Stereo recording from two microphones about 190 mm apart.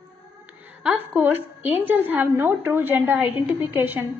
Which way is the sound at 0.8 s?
5° right (ahead or behind).